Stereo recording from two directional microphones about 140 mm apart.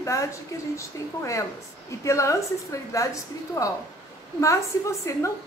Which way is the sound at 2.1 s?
20° left (ahead or behind).